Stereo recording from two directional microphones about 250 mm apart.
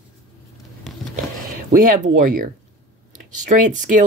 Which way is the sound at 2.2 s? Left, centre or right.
Right.